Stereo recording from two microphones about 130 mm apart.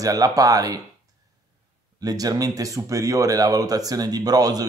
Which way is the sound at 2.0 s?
30° right (ahead or behind).